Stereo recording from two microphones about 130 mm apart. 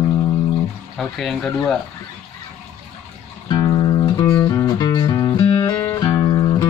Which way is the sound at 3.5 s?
35° left (ahead or behind).